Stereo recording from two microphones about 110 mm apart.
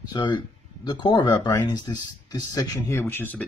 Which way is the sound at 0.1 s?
45° left (ahead or behind).